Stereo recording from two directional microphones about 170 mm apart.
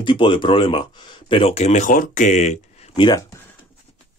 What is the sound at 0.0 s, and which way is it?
Speech, 30° left (ahead or behind).